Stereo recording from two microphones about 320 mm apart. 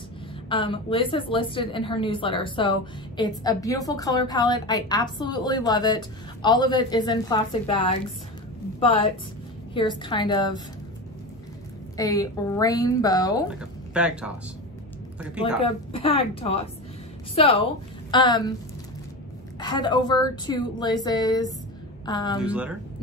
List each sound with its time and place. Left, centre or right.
0.5 s a woman's voice: centre
12.0 s a woman's voice: centre
13.5 s speech: centre
15.6 s a woman's voice: centre
19.6 s a woman's voice: centre
22.4 s speech: centre